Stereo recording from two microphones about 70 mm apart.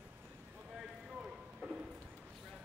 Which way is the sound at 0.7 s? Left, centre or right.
Centre.